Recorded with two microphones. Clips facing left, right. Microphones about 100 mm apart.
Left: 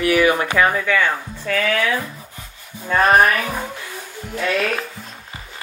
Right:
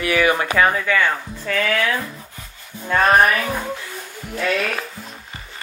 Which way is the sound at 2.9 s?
5° left (ahead or behind).